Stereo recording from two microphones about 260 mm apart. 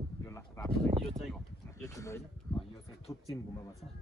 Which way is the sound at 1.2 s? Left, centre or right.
Centre.